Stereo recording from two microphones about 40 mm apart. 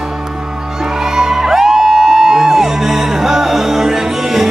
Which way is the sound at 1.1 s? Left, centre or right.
Centre.